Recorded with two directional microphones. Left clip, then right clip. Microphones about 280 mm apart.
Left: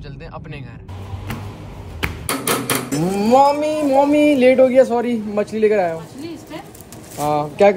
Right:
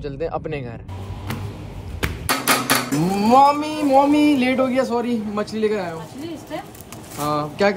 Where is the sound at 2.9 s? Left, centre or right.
Centre.